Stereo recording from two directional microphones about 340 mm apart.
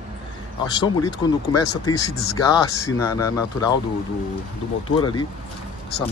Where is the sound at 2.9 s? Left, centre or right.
Centre.